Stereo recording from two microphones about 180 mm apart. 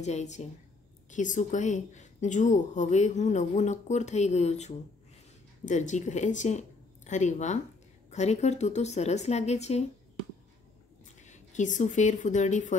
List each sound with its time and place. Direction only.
0.0 s a woman's voice: 40° left (ahead or behind)
11.1 s speech: 40° left (ahead or behind)